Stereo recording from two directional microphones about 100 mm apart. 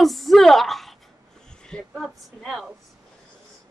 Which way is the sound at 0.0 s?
Centre (ahead or behind).